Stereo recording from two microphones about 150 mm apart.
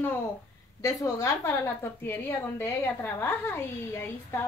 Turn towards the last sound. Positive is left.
turn(degrees=15)  # may be behind; listen again after turning